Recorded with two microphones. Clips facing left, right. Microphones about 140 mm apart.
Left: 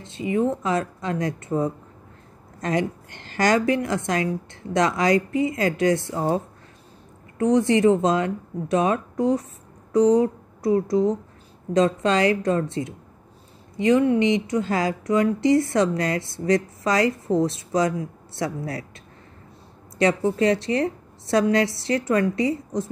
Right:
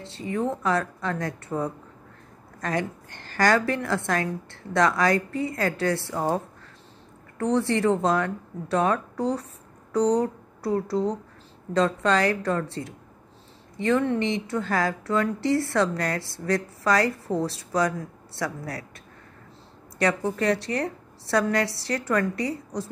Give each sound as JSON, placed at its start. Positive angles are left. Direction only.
{"t": 0.0, "sound": "a woman's voice", "side_deg": 15}
{"t": 2.8, "sound": "a woman's voice", "side_deg": -50}
{"t": 3.3, "sound": "a woman's voice", "side_deg": 15}
{"t": 7.3, "sound": "a woman's voice", "side_deg": 15}
{"t": 20.0, "sound": "a woman's voice", "side_deg": 20}